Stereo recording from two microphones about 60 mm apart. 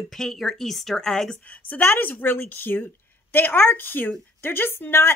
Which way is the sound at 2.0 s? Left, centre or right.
Left.